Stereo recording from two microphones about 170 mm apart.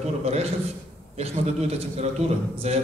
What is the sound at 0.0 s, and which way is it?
A man's voice, 40° right (ahead or behind).